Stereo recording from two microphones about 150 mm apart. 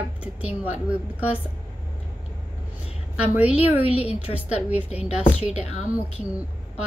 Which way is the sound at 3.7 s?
10° right (ahead or behind).